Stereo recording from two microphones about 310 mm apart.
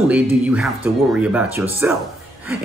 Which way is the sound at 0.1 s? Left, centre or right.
Centre.